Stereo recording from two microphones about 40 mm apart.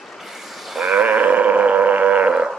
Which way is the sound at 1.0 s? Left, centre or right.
Right.